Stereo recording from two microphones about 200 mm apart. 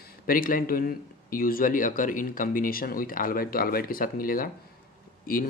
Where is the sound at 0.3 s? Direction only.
45° left (ahead or behind).